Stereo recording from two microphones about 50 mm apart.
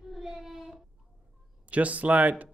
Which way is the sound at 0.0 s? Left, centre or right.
Centre.